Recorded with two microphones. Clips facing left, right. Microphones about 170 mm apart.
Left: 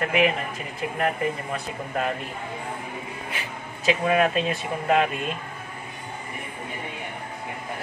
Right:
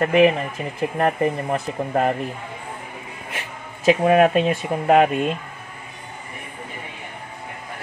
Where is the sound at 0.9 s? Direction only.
45° right (ahead or behind).